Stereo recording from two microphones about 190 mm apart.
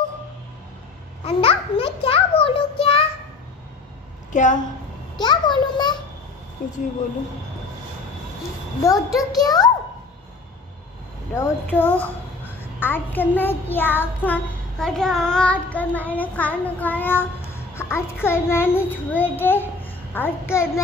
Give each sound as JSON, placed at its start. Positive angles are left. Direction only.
{"t": 1.2, "sound": "a child's voice", "side_deg": 30}
{"t": 4.3, "sound": "a woman's voice", "side_deg": 40}
{"t": 5.2, "sound": "a child's voice", "side_deg": 25}
{"t": 8.8, "sound": "a child's voice", "side_deg": 20}
{"t": 11.3, "sound": "a child's voice", "side_deg": 10}